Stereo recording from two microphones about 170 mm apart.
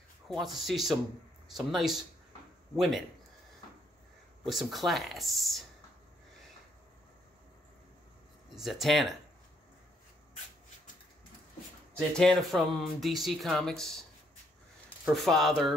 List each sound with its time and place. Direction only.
0.3 s speech: centre (ahead or behind)
4.5 s speech: centre (ahead or behind)
8.5 s speech: centre (ahead or behind)
11.9 s speech: 5° left (ahead or behind)
15.1 s speech: centre (ahead or behind)